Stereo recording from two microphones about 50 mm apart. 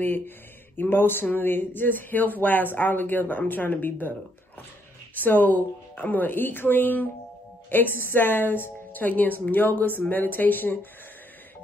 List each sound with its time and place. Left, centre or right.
0.7 s speech: left
5.1 s speech: left